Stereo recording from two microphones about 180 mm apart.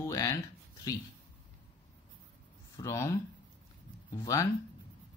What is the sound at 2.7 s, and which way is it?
Speech, 15° left (ahead or behind).